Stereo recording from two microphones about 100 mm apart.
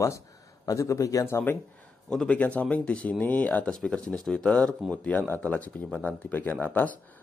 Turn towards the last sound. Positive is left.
turn(degrees=15)  # may be behind; listen again after turning